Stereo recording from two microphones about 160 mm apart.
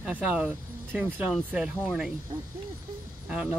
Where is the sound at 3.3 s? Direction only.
5° right (ahead or behind).